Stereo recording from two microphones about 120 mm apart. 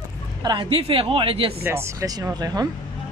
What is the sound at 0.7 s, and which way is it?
Speech, 55° right (ahead or behind).